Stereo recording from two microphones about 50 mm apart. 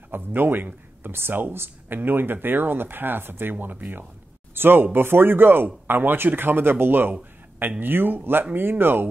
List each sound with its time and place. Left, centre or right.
0.1 s speech: right